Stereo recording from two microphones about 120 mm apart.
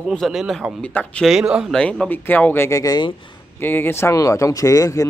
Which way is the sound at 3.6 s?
20° left (ahead or behind).